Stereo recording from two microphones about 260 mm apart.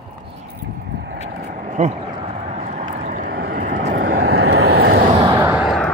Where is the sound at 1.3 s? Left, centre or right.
Right.